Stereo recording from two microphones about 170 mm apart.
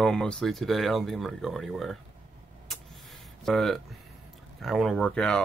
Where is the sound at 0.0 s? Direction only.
5° left (ahead or behind).